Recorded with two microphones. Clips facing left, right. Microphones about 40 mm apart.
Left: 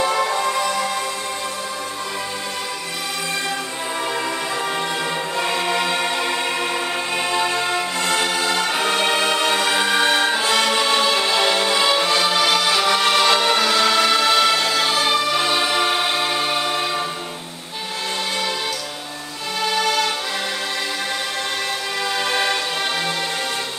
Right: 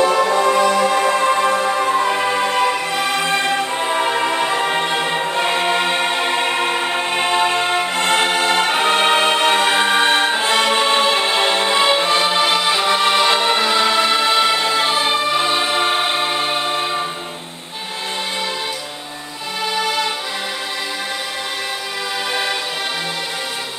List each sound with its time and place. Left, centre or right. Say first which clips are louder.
0.4 s music: right 6 dB; right; by 17.0 s centre
19.6 s music: even; centre
22.3 s music: even; centre